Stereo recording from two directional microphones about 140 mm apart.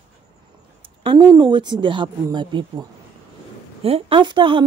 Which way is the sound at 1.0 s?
30° right (ahead or behind).